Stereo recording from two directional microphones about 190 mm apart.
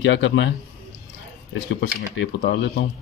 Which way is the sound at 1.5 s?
75° left (ahead or behind).